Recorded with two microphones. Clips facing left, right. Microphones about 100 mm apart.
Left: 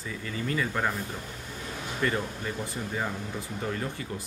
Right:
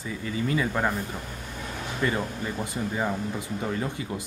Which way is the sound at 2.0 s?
15° right (ahead or behind).